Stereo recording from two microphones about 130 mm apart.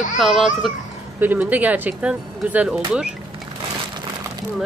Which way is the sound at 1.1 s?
15° right (ahead or behind).